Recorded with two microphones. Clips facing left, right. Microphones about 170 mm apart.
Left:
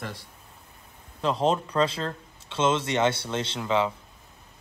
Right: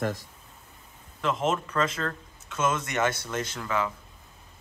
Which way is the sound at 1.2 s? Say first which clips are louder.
Left 3 dB; 35° left (ahead or behind).